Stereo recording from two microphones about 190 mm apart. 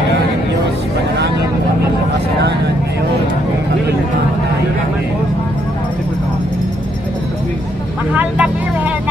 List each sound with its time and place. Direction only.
8.1 s vehicle: 10° right (ahead or behind)